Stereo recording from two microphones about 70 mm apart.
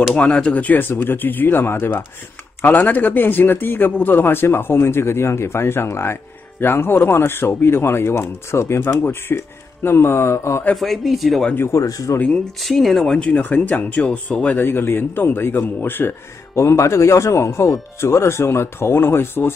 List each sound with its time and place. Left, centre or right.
0.1 s speech: centre; by 10.6 s left
10.7 s speech: centre
11.7 s speech: left
12.6 s speech: centre
13.3 s speech: left
16.5 s speech: left